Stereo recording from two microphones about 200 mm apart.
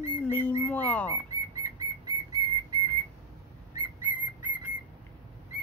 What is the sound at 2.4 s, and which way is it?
Whistle, 20° right (ahead or behind).